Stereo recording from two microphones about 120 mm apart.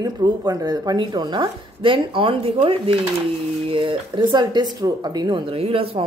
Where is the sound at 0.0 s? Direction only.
35° right (ahead or behind).